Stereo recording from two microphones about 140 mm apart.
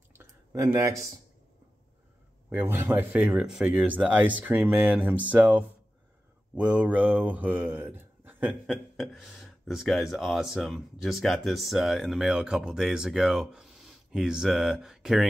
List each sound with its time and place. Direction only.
0.2 s a sound: 20° right (ahead or behind)
2.5 s speech: 15° right (ahead or behind)
8.9 s speech: centre (ahead or behind)